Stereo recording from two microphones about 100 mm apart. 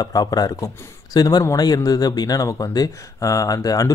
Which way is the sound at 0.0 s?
40° left (ahead or behind).